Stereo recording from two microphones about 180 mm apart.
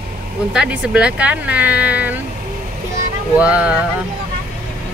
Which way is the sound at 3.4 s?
5° right (ahead or behind).